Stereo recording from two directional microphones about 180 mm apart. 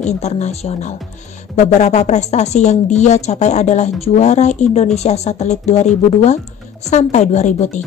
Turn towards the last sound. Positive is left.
turn(degrees=40)  # may be behind; listen again after turning